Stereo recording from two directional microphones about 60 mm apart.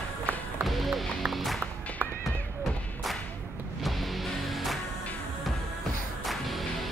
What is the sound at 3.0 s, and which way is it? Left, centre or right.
Whip, centre.